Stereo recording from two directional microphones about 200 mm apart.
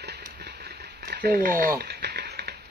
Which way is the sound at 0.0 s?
55° right (ahead or behind).